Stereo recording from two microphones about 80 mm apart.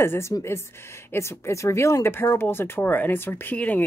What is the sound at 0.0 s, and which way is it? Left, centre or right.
A woman's voice, left.